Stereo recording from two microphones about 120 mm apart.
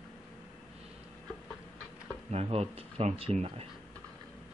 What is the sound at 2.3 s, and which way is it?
Speech, 55° right (ahead or behind).